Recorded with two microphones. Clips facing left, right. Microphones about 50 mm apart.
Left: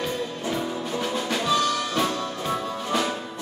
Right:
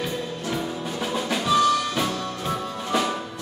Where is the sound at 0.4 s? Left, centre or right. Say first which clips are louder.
Even; centre.